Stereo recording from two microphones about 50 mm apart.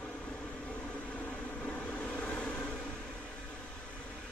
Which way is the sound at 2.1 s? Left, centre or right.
Centre.